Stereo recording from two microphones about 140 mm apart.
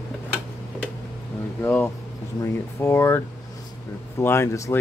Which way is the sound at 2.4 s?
20° left (ahead or behind).